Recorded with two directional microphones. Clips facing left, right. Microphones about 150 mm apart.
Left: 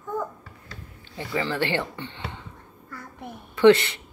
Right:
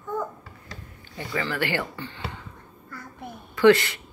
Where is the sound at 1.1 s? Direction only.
25° left (ahead or behind).